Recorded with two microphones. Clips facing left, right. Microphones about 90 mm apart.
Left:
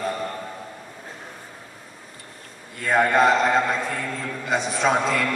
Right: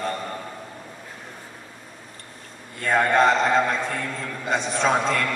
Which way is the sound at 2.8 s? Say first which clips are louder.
Even; 5° left (ahead or behind).